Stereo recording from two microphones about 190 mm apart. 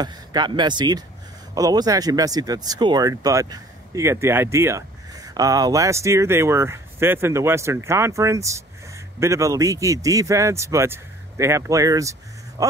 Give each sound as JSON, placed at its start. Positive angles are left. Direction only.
{"t": 0.0, "sound": "speech", "side_deg": -20}